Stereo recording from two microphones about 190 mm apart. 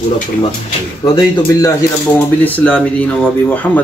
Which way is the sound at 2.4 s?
5° left (ahead or behind).